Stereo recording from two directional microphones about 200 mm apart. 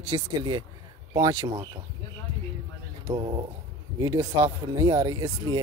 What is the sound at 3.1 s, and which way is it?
Speech, 25° right (ahead or behind).